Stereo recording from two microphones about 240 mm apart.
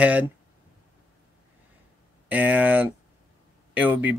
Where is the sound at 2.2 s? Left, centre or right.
Centre.